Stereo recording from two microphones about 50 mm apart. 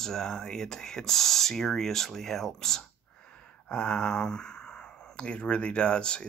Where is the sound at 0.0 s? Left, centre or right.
Centre.